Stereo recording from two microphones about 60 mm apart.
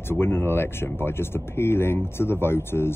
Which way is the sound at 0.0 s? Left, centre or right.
Left.